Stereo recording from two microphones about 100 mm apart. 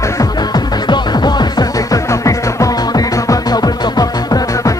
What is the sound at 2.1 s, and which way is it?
Music, 30° left (ahead or behind).